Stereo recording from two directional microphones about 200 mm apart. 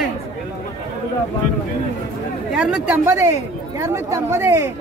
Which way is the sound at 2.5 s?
5° right (ahead or behind).